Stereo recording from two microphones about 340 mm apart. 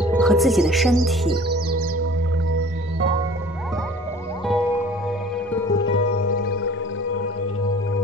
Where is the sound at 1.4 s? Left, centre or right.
Right.